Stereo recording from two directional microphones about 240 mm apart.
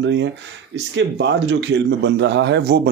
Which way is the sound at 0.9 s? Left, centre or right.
Right.